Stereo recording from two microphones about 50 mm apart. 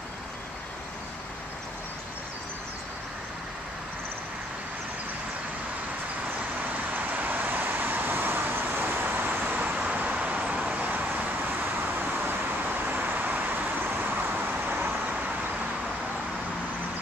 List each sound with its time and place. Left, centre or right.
6.9 s vehicle: right